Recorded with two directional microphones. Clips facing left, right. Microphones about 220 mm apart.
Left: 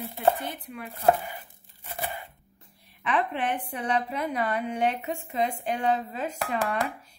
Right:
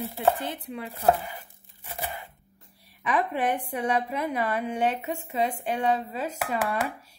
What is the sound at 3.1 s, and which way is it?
Speech, 10° right (ahead or behind).